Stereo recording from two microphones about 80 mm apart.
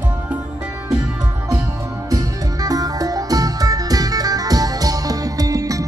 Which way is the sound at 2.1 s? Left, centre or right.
Right.